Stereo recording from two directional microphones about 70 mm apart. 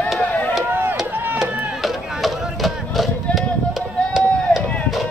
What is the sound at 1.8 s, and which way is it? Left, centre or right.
Chop, centre.